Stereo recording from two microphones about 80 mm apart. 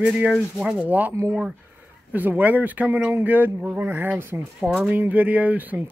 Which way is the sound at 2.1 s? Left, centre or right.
Right.